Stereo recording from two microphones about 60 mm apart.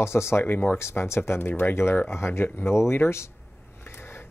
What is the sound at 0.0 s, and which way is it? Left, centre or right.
Speech, left.